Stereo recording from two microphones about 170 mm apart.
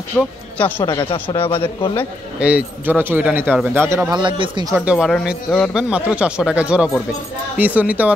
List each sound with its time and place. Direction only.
0.2 s speech: centre (ahead or behind)
0.8 s speech: 30° left (ahead or behind)
2.4 s speech: 10° right (ahead or behind)
4.1 s speech: 30° right (ahead or behind)
4.7 s speech: 5° right (ahead or behind)